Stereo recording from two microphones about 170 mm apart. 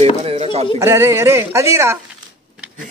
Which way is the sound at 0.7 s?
15° right (ahead or behind).